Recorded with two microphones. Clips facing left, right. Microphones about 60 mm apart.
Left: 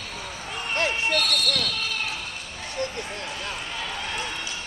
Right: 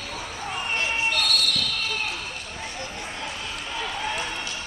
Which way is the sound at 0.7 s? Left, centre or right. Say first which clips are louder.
Left 3 dB; left.